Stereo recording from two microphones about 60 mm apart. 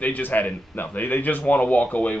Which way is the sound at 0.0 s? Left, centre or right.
Left.